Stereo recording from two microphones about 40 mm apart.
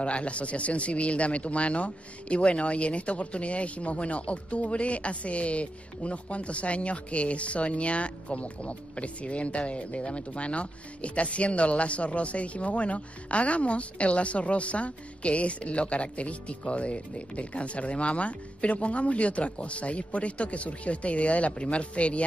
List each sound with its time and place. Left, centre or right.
0.0 s speech: left